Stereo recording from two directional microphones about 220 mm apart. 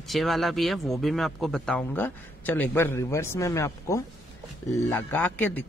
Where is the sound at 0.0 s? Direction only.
Centre (ahead or behind).